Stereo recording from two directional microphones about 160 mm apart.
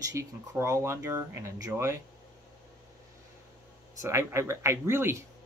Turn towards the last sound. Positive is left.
turn(degrees=-15)  # may be behind; listen again after turning